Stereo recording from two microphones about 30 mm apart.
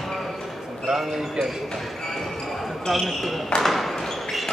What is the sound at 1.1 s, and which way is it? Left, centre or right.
Speech, centre.